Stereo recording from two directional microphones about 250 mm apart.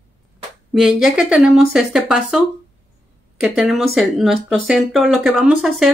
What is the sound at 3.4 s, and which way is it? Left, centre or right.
Speech, centre.